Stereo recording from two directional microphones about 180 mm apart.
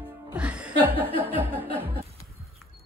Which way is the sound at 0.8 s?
30° left (ahead or behind).